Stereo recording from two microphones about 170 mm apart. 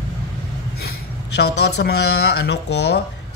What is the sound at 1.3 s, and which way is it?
Speech, 80° left.